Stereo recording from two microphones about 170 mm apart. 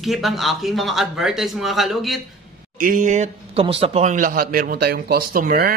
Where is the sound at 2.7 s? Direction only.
55° right (ahead or behind).